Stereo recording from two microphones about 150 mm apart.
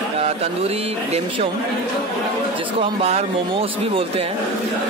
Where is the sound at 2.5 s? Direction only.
35° right (ahead or behind).